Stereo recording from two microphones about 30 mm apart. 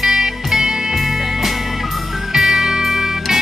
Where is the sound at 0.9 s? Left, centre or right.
Centre.